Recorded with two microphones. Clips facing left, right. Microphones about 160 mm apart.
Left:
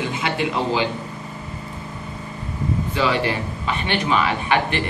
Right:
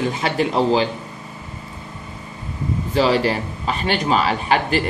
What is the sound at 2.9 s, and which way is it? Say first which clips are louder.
Speech: right 5 dB; 35° right (ahead or behind).